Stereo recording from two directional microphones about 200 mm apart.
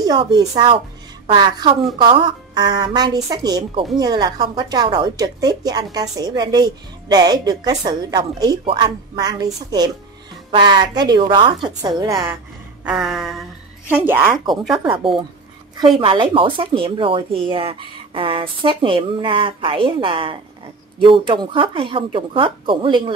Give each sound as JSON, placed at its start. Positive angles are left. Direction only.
{"t": 0.0, "sound": "a woman's voice", "side_deg": -20}
{"t": 12.8, "sound": "a woman's voice", "side_deg": 0}
{"t": 14.8, "sound": "a woman's voice", "side_deg": -25}